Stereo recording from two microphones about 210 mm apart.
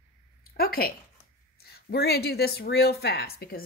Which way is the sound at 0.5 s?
45° left (ahead or behind).